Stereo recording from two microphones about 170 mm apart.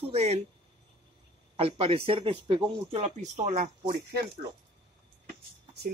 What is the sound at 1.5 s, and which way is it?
Speech, 35° right (ahead or behind).